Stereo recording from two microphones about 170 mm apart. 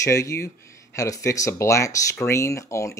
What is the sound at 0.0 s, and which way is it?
Speech, 20° left (ahead or behind).